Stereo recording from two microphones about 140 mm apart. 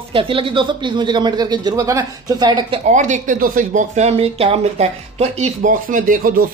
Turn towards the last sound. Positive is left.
turn(degrees=-85)